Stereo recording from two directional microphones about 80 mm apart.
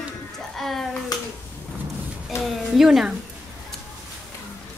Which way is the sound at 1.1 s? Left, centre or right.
Left.